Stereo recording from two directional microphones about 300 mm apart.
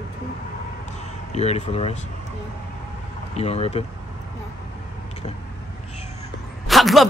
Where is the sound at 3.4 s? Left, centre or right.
Left.